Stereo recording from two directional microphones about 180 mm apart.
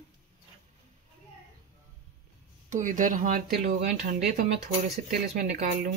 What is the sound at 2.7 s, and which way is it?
Speech, 45° right (ahead or behind).